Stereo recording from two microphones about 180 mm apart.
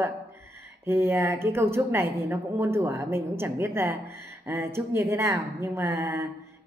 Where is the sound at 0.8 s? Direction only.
15° right (ahead or behind).